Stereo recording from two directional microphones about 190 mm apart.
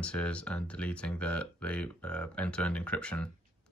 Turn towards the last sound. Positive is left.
turn(degrees=5)  # may be behind; listen again after turning